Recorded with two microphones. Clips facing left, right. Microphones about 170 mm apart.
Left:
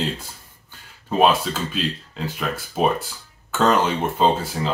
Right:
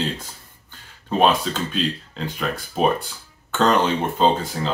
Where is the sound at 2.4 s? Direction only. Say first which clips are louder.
Right 1 dB; 5° left (ahead or behind).